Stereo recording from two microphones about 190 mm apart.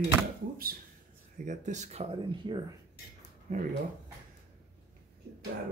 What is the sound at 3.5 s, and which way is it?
Speech, 40° right (ahead or behind).